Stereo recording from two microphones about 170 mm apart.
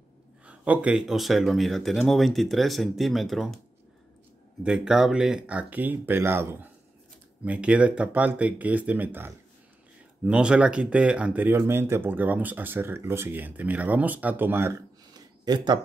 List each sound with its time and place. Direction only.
0.5 s speech: 5° right (ahead or behind)
4.6 s speech: 5° right (ahead or behind)
15.1 s a sound: 25° right (ahead or behind)